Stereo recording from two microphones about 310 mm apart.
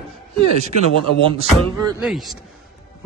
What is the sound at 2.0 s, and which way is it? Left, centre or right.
Speech, centre.